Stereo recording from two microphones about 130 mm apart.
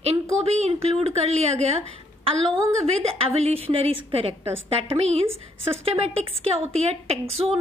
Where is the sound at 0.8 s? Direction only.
50° right (ahead or behind).